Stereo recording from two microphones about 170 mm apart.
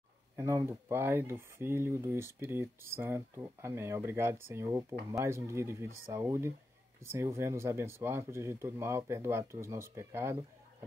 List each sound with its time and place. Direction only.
0.4 s speech: 15° right (ahead or behind)